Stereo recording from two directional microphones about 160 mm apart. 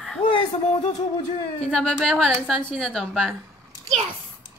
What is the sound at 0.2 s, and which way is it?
Music, 30° left (ahead or behind).